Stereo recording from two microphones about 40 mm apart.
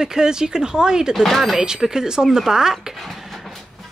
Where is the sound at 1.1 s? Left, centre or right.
Centre.